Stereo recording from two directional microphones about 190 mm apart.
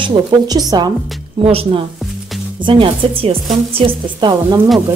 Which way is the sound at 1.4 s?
30° right (ahead or behind).